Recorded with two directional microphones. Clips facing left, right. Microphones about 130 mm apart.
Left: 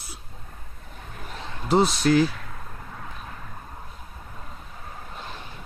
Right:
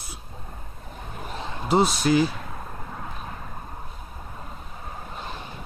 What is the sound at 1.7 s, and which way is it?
Speech, 5° right (ahead or behind).